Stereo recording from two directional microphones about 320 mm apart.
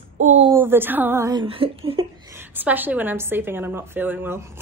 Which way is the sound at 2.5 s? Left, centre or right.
Centre.